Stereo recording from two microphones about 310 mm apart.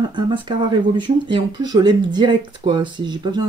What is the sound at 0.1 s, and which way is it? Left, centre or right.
Speech, centre.